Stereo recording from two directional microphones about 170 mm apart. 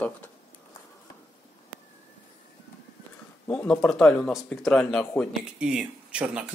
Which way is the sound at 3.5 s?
5° left (ahead or behind).